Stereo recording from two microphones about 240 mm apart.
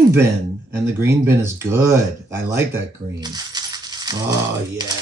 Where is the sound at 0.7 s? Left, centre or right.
Centre.